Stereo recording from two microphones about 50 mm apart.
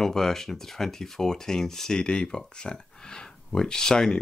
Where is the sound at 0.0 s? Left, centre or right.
Centre.